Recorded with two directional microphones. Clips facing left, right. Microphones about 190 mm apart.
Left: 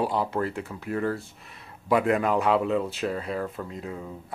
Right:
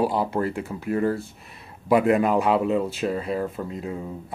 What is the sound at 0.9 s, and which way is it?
Speech, 25° right (ahead or behind).